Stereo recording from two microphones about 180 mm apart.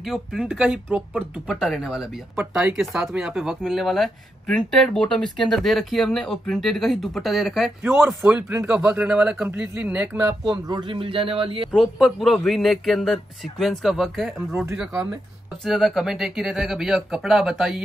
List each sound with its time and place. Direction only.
0.0 s speech: centre (ahead or behind)
10.4 s speech: 25° right (ahead or behind)
11.7 s speech: centre (ahead or behind)